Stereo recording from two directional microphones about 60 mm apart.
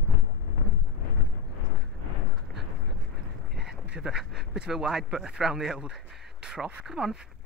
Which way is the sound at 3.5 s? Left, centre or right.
Centre.